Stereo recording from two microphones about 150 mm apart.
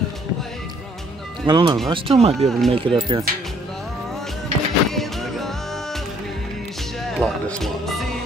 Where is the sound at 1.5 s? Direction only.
30° right (ahead or behind).